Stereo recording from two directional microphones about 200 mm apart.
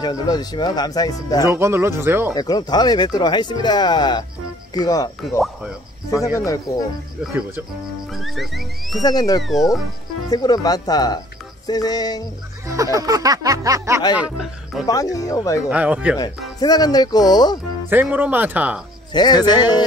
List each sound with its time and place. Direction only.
0.0 s speech: 20° left (ahead or behind)
1.5 s music: 10° right (ahead or behind)
2.3 s speech: 20° left (ahead or behind)
8.1 s music: centre (ahead or behind)
9.0 s speech: 20° left (ahead or behind)
9.4 s music: centre (ahead or behind)
10.3 s speech: 20° left (ahead or behind)
12.6 s music: 15° right (ahead or behind)
14.1 s music: 5° right (ahead or behind)
14.9 s speech: 15° left (ahead or behind)
15.7 s music: 5° right (ahead or behind)
16.2 s speech: 20° left (ahead or behind)
17.8 s music: 10° right (ahead or behind)
19.1 s speech: 20° left (ahead or behind)